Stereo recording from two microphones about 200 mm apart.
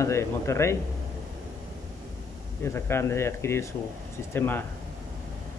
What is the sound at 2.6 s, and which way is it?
Speech, 10° left (ahead or behind).